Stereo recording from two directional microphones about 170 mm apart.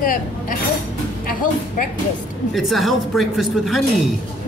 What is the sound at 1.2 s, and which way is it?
Speech, 55° left (ahead or behind).